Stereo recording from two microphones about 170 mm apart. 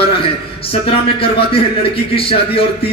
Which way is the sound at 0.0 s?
35° left (ahead or behind).